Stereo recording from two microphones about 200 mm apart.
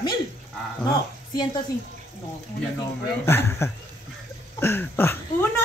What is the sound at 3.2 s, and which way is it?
Speech, 10° left (ahead or behind).